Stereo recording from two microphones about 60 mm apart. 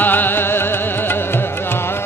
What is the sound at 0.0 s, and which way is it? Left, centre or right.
Music, left.